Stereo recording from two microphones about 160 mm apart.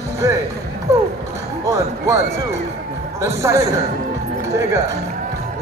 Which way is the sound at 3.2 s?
20° right (ahead or behind).